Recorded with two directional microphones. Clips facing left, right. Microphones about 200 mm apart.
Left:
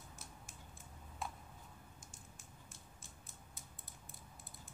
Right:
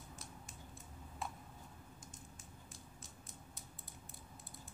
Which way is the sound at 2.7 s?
Centre (ahead or behind).